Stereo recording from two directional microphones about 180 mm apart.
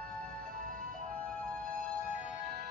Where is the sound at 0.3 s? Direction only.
50° right (ahead or behind).